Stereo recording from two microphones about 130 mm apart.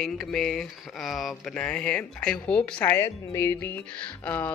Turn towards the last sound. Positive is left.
turn(degrees=15)  # may be behind; listen again after turning